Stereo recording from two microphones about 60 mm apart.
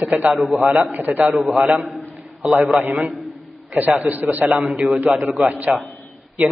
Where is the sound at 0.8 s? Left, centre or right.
Right.